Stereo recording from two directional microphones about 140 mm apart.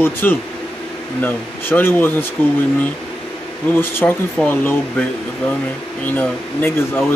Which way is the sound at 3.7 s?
15° left (ahead or behind).